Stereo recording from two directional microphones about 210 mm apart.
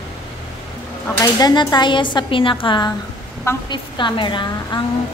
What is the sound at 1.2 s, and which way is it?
A woman's voice, 20° left (ahead or behind).